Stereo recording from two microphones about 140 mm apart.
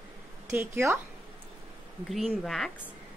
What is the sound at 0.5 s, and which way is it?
Speech, 20° right (ahead or behind).